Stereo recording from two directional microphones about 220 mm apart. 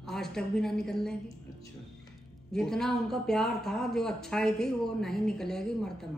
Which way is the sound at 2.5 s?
Centre (ahead or behind).